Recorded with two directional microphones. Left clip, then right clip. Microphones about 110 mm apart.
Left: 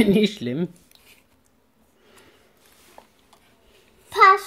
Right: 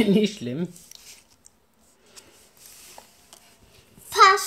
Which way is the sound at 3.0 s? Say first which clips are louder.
Left 2 dB; 20° left (ahead or behind).